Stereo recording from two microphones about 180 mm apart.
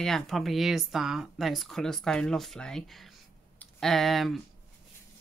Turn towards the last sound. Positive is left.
turn(degrees=0)  # may be behind; listen again after turning